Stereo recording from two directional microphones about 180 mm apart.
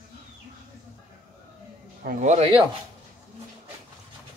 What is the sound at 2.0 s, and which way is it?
Speech, 40° right (ahead or behind).